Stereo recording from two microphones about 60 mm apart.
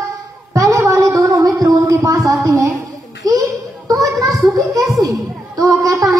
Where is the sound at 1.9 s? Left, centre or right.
Right.